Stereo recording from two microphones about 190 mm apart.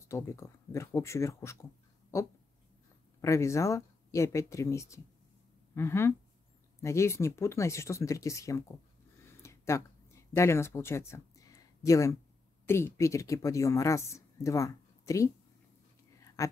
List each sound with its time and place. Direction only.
0.1 s speech: 15° left (ahead or behind)
3.2 s speech: 15° left (ahead or behind)
9.4 s a sound: 15° left (ahead or behind)
10.3 s speech: 15° left (ahead or behind)
16.4 s speech: 15° left (ahead or behind)